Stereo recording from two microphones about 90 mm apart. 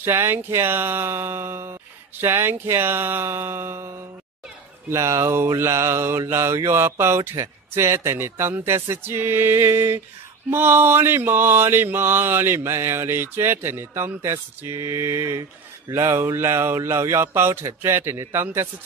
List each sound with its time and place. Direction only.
0.0 s mantra: 25° right (ahead or behind)